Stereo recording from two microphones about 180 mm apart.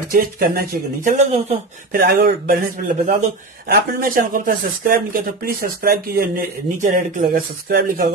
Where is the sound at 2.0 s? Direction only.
60° right (ahead or behind).